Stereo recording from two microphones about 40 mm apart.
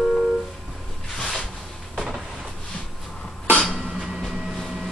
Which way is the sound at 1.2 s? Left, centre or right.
Centre.